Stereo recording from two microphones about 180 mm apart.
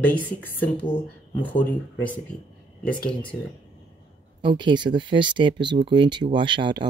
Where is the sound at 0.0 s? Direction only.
10° left (ahead or behind).